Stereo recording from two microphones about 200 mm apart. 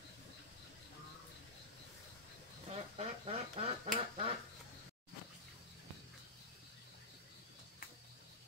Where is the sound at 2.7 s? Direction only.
30° right (ahead or behind).